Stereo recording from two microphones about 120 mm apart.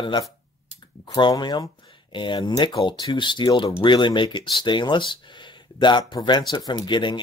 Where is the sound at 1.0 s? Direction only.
40° left (ahead or behind).